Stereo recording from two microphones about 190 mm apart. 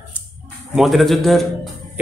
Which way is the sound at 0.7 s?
Centre (ahead or behind).